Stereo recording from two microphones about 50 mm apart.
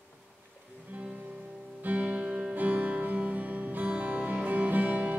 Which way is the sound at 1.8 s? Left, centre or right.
Right.